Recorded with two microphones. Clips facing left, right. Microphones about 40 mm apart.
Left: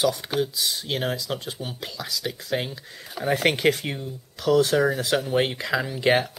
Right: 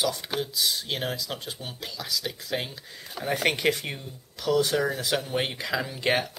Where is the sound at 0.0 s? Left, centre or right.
Centre.